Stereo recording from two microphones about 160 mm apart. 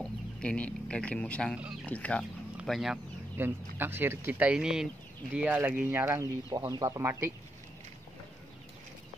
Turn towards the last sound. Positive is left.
turn(degrees=-15)  # may be behind; listen again after turning